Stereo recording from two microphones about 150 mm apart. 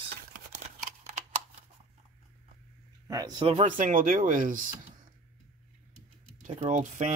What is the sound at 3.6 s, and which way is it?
Speech, 60° right (ahead or behind).